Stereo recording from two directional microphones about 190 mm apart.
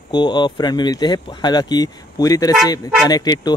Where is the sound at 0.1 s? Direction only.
25° left (ahead or behind).